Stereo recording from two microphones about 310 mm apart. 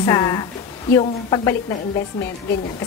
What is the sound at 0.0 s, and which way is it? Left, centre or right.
A woman's voice, centre.